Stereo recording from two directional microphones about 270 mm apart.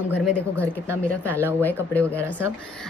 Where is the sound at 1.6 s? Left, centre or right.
Centre.